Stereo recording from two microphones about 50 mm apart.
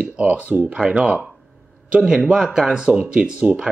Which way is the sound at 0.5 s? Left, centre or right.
Right.